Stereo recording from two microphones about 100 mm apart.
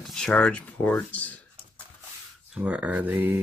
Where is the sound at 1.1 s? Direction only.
15° left (ahead or behind).